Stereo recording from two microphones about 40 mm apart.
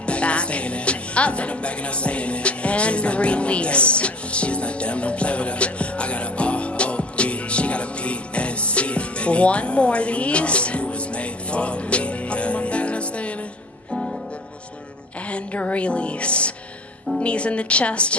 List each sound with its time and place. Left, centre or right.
0.0 s music: left
15.2 s a woman's voice: left